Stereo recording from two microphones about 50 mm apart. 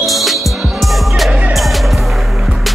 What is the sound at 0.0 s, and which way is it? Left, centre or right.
Music, centre.